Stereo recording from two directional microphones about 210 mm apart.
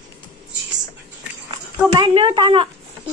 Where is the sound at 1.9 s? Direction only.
25° right (ahead or behind).